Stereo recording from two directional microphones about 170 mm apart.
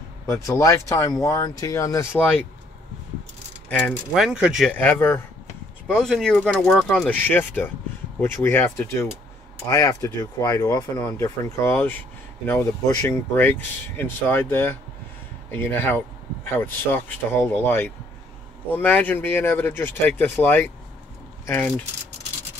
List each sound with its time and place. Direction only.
0.3 s speech: 15° left (ahead or behind)
3.6 s speech: 10° left (ahead or behind)
4.1 s speech: 5° right (ahead or behind)